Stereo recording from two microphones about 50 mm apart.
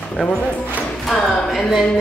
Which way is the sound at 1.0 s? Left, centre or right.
Centre.